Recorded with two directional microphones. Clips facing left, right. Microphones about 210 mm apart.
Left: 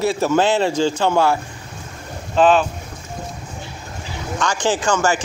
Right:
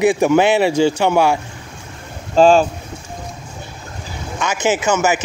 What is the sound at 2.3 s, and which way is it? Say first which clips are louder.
Speech: right 4 dB; 35° right (ahead or behind).